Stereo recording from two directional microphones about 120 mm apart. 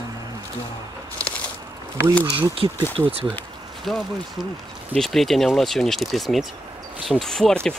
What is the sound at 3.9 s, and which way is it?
Speech, centre (ahead or behind).